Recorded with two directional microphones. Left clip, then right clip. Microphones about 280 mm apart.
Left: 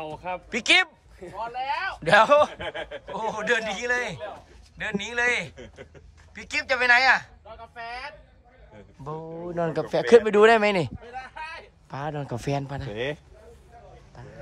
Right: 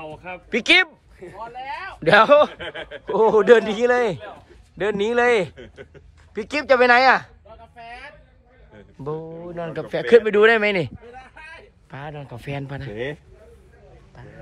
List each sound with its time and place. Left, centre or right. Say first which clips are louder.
0.0 s a sound: left 2 dB; left
0.5 s speech: right 4 dB; centre
1.2 s speech: left 2 dB; left
1.9 s speech: right 4 dB; centre
2.5 s speech: right 1 dB; left
3.1 s a man's voice: right 12 dB; centre
5.6 s speech: right 3 dB; left
6.3 s a man's voice: right 8 dB; centre
9.0 s speech: right 6 dB; centre
9.3 s speech: left 2 dB; left
11.1 s a sound: left 4 dB; centre
11.9 s speech: left 3 dB; left